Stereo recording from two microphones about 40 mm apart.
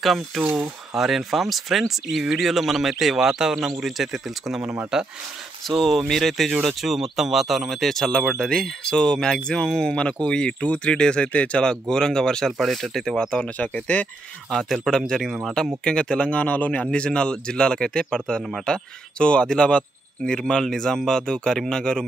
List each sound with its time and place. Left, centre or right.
0.0 s speech: centre
5.7 s speech: centre
6.6 s speech: centre; by 11.6 s left
11.9 s speech: centre
12.4 s speech: centre
13.6 s speech: left
14.9 s speech: centre
16.4 s a man's voice: left
16.9 s speech: left